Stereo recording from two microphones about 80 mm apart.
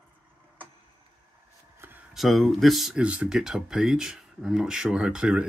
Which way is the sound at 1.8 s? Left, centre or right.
Right.